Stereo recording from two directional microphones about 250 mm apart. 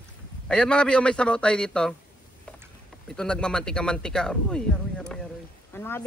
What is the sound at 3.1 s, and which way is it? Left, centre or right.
Speech, centre.